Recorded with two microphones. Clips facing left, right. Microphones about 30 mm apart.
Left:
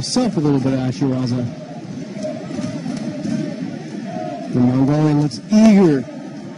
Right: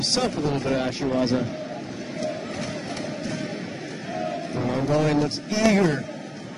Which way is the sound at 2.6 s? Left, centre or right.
Right.